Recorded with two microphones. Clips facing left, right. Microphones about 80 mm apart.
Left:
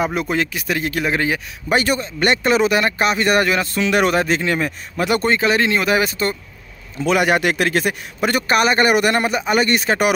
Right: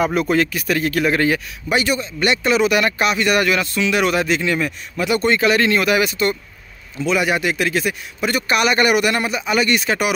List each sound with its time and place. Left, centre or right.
0.0 s speech: centre
1.7 s speech: left
7.0 s a man's voice: left